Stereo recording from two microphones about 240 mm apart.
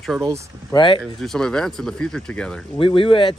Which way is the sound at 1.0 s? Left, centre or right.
Centre.